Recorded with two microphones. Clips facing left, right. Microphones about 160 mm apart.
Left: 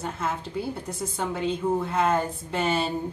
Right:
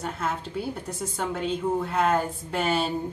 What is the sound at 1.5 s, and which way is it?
Speech, 5° left (ahead or behind).